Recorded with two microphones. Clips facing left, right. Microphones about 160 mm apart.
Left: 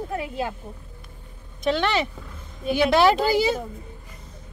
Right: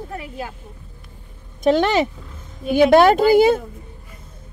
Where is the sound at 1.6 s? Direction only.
45° right (ahead or behind).